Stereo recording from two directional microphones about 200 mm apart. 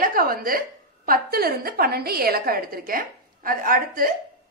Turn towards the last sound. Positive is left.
turn(degrees=-45)  # may be behind; listen again after turning